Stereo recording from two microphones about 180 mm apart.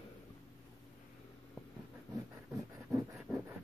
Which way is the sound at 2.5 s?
15° right (ahead or behind).